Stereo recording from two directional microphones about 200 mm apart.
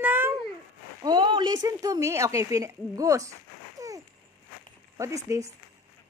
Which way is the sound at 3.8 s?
15° right (ahead or behind).